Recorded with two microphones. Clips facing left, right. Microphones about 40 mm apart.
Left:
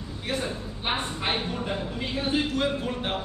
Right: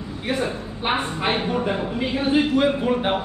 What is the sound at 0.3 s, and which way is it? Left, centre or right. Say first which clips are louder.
Speech: right 6 dB; centre.